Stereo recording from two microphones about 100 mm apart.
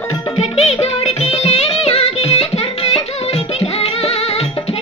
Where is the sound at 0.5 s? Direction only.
90° left.